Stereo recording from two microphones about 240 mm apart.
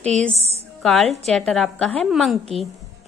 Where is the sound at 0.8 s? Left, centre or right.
Centre.